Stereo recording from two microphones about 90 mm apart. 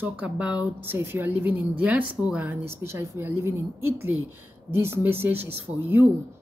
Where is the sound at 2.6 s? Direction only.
25° right (ahead or behind).